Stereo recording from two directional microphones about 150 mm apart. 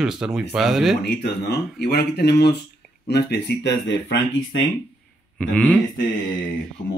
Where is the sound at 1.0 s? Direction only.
90° left.